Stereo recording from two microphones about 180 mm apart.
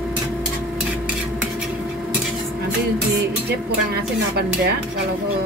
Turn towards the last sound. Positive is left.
turn(degrees=-65)  # may be behind; listen again after turning